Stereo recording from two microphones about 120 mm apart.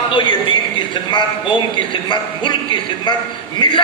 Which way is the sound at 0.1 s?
40° left (ahead or behind).